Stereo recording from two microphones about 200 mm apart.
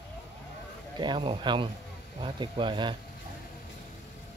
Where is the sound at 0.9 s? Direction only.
25° right (ahead or behind).